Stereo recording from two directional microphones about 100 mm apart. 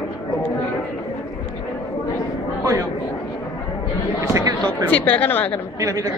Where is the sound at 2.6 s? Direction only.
30° right (ahead or behind).